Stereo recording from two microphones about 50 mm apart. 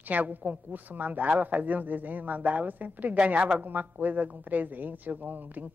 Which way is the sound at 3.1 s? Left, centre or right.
Right.